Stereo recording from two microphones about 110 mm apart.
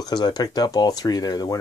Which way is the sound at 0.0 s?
40° left (ahead or behind).